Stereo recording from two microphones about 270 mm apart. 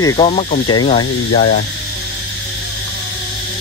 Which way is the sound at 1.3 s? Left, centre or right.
Left.